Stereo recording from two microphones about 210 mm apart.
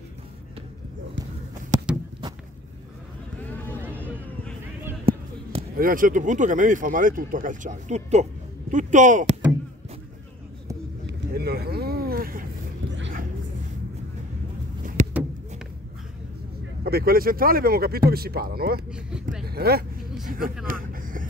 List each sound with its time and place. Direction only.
1.7 s a sound: 35° right (ahead or behind)
5.6 s speech: 40° right (ahead or behind)
11.1 s vehicle: 50° right (ahead or behind)
15.0 s a sound: 35° right (ahead or behind)
16.8 s speech: 45° right (ahead or behind)
18.9 s speech: 5° right (ahead or behind)
19.4 s vehicle: 45° right (ahead or behind)
20.2 s speech: 40° right (ahead or behind)
20.6 s vehicle: 40° right (ahead or behind)